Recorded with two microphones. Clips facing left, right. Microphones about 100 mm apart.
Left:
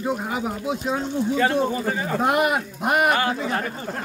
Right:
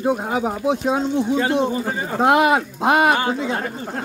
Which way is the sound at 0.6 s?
70° right (ahead or behind).